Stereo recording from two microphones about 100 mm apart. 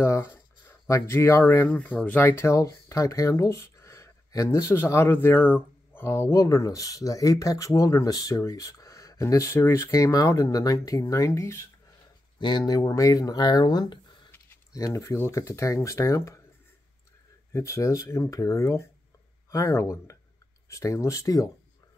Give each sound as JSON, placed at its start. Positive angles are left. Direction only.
{"t": 0.0, "sound": "speech", "side_deg": 25}
{"t": 2.5, "sound": "speech", "side_deg": 35}
{"t": 12.4, "sound": "speech", "side_deg": 50}
{"t": 12.8, "sound": "speech", "side_deg": 30}
{"t": 14.7, "sound": "speech", "side_deg": 35}
{"t": 17.5, "sound": "speech", "side_deg": 30}